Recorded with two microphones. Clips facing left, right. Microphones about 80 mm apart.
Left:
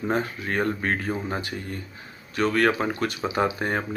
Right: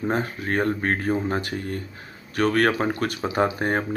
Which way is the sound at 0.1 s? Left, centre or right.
Right.